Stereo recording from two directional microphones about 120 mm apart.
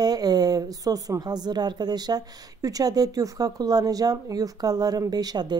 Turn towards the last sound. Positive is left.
turn(degrees=-35)  # may be behind; listen again after turning